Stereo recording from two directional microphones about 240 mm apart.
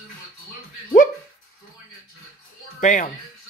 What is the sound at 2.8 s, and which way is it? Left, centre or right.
Speech, left.